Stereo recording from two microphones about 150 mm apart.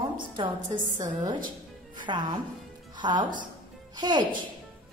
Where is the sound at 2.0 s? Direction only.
30° right (ahead or behind).